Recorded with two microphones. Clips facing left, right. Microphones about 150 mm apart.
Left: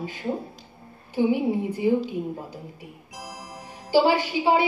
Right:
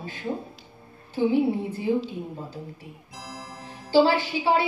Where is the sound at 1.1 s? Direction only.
15° left (ahead or behind).